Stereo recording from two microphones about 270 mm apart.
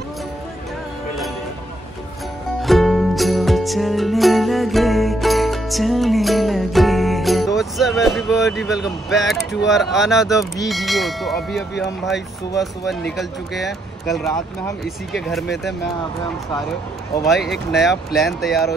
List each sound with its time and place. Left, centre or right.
2.6 s music: centre
9.7 s speech: centre
17.2 s speech: centre